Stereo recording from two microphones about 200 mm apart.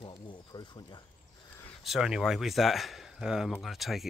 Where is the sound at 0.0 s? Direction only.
25° left (ahead or behind).